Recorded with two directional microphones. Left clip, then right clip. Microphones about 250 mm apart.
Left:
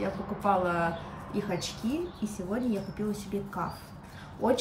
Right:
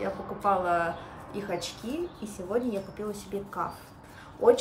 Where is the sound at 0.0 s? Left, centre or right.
Centre.